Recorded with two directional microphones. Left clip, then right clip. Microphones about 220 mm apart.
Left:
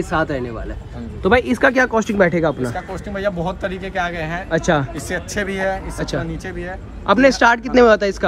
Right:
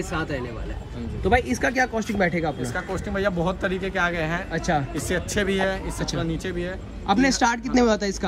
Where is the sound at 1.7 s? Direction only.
45° left (ahead or behind).